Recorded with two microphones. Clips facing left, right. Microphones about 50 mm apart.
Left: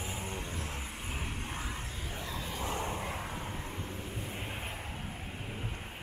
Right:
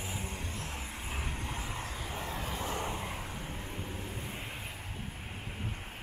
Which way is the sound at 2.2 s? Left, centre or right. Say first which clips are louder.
Right 1 dB; right.